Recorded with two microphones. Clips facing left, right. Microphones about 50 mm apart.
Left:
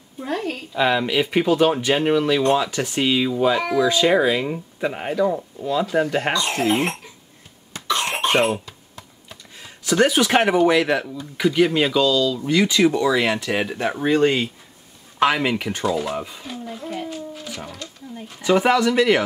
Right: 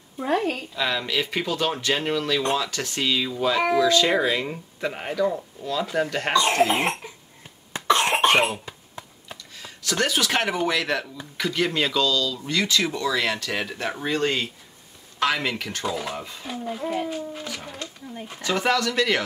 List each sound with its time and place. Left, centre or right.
0.2 s a child's voice: centre
0.7 s speech: centre
7.7 s cough: right
8.6 s a sound: right
9.6 s speech: centre
15.8 s speech: centre
16.4 s a child's voice: centre
18.4 s speech: centre